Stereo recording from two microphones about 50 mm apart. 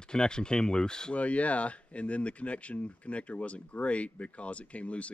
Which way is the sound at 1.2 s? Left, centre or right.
Left.